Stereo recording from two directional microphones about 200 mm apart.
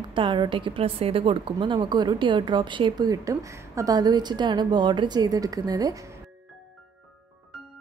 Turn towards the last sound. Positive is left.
turn(degrees=-15)  # may be behind; listen again after turning